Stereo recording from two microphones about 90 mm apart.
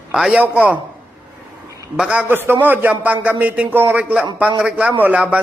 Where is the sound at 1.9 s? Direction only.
10° right (ahead or behind).